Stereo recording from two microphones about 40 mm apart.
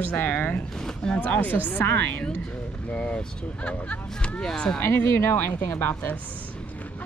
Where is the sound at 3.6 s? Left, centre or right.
Left.